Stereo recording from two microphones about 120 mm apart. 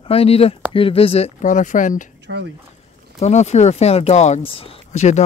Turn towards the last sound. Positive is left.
turn(degrees=75)  # may be behind; listen again after turning